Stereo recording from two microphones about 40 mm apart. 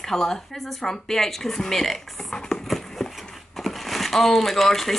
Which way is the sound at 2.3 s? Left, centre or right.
Centre.